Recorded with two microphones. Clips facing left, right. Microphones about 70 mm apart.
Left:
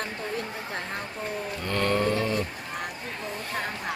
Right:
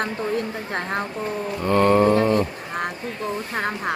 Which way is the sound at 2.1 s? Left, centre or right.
Right.